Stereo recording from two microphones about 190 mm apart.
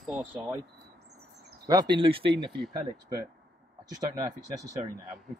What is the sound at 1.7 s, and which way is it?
Speech, 20° right (ahead or behind).